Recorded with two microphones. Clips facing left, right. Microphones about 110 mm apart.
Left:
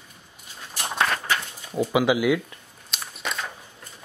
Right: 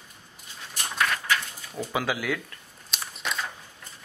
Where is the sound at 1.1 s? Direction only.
40° left (ahead or behind).